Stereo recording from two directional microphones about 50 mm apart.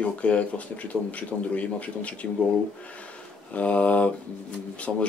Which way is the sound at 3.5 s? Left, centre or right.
Left.